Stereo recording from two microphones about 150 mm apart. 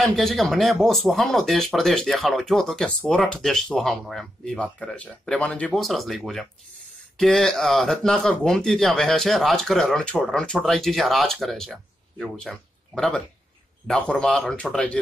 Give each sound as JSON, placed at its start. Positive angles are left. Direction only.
{"t": 0.0, "sound": "speech", "side_deg": 0}